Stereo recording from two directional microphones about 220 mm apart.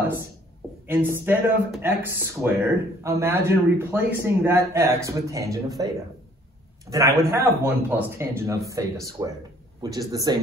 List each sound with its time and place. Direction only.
0.8 s a man's voice: 10° right (ahead or behind)
6.9 s a man's voice: 15° right (ahead or behind)